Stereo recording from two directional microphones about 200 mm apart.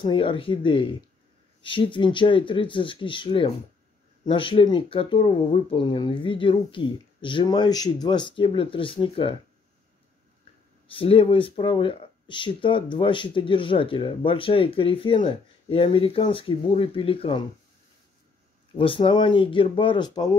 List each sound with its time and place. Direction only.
0.0 s speech: 25° left (ahead or behind)
10.9 s speech: 25° left (ahead or behind)
18.8 s speech: 25° left (ahead or behind)